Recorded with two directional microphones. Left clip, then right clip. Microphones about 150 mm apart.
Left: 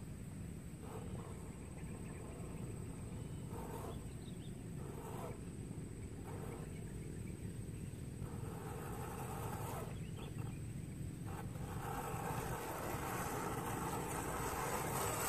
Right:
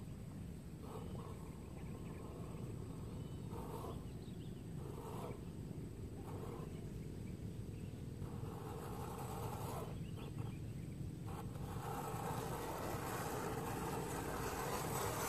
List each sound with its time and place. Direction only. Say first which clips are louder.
9.3 s vehicle: left 1 dB; 10° left (ahead or behind)
11.8 s vehicle: left 1 dB; 10° left (ahead or behind); by 15.2 s 25° left (ahead or behind)